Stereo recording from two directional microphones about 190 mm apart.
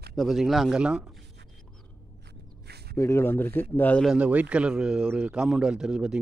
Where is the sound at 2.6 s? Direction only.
60° right (ahead or behind).